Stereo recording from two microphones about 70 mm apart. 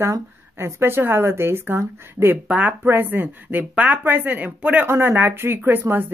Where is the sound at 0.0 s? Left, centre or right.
Right.